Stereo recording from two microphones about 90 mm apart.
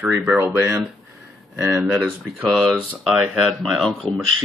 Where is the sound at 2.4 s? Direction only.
5° left (ahead or behind).